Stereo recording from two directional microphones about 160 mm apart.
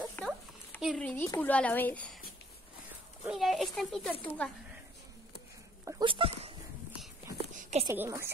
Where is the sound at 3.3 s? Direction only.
Centre (ahead or behind).